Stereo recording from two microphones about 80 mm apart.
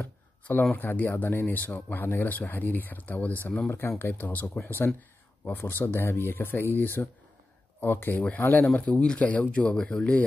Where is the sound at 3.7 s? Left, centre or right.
Left.